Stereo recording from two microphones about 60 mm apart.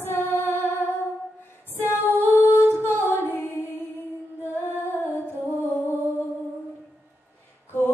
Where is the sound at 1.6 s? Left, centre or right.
Left.